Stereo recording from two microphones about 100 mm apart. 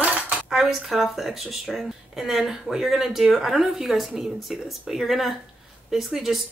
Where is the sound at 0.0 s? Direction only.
15° right (ahead or behind).